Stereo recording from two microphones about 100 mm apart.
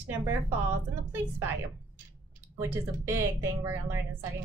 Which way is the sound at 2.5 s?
25° right (ahead or behind).